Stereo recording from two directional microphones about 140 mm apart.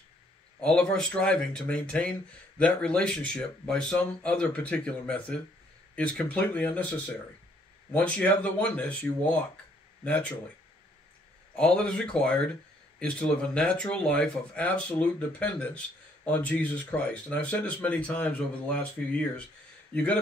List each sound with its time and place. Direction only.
0.6 s speech: 5° left (ahead or behind)
7.9 s speech: 10° left (ahead or behind)
11.5 s speech: 5° left (ahead or behind)
19.9 s a man's voice: 10° left (ahead or behind)